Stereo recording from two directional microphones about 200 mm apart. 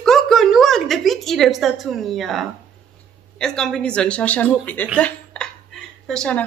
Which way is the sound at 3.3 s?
5° left (ahead or behind).